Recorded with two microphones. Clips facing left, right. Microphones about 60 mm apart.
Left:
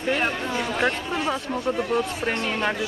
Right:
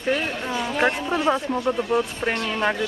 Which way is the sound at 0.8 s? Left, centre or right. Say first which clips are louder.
Right 6 dB; centre.